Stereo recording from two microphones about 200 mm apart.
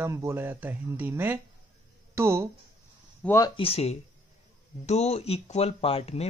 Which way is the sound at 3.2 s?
15° left (ahead or behind).